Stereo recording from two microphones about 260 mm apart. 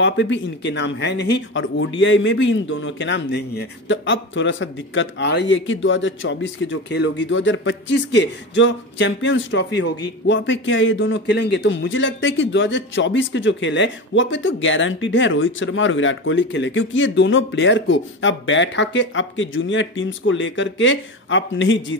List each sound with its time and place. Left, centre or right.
0.0 s a man's voice: left